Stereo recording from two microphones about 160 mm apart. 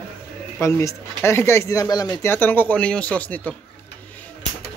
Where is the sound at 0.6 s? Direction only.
20° left (ahead or behind).